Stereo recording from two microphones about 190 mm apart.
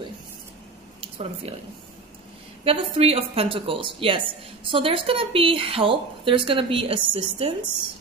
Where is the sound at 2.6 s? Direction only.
30° right (ahead or behind).